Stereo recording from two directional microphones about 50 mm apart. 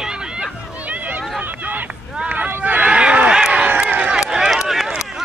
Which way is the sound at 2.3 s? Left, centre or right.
Right.